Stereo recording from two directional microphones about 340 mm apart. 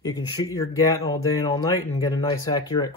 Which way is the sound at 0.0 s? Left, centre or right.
Centre.